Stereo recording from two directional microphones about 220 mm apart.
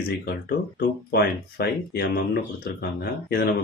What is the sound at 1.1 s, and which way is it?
Speech, 45° left (ahead or behind).